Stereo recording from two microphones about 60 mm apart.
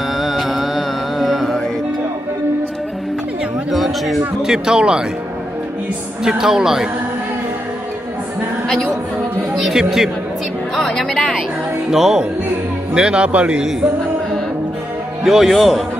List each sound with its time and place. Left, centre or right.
0.2 s music: centre
3.7 s a sound: centre
4.4 s speech: centre
6.2 s speech: centre
8.6 s a sound: centre
9.6 s a man's voice: centre
10.8 s speech: centre
11.9 s a man's voice: centre
15.2 s a man's voice: centre